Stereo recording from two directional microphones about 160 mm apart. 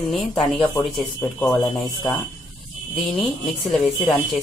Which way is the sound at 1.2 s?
15° left (ahead or behind).